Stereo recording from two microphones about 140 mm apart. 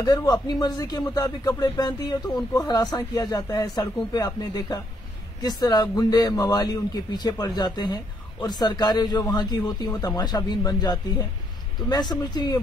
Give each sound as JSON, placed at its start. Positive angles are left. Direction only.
{"t": 0.0, "sound": "speech", "side_deg": 25}